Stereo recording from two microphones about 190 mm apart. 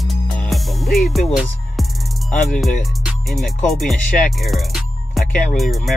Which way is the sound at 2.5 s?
Centre (ahead or behind).